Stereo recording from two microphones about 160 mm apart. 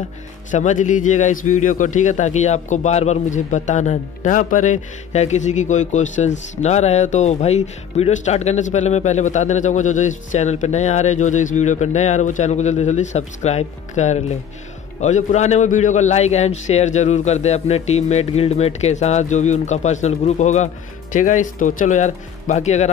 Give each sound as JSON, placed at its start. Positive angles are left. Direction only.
{"t": 0.5, "sound": "a man's voice", "side_deg": 50}